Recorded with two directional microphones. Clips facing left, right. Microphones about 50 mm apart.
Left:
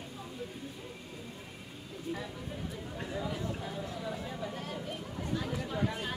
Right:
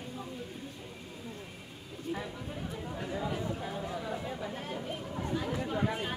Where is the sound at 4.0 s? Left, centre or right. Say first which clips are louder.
Right 1 dB; centre.